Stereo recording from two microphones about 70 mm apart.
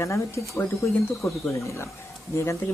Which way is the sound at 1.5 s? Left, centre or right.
Left.